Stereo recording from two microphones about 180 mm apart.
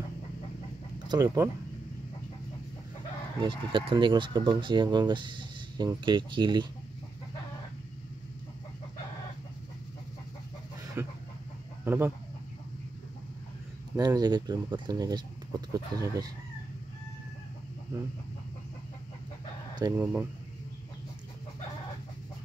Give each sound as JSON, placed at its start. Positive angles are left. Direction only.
{"t": 1.0, "sound": "speech", "side_deg": -20}
{"t": 3.4, "sound": "speech", "side_deg": -25}
{"t": 11.0, "sound": "speech", "side_deg": -15}
{"t": 13.9, "sound": "speech", "side_deg": -20}
{"t": 20.0, "sound": "speech", "side_deg": -5}